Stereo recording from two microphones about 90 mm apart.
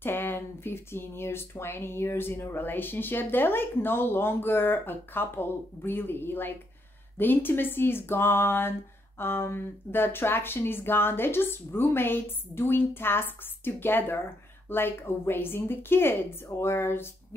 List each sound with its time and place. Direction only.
0.0 s speech: 25° left (ahead or behind)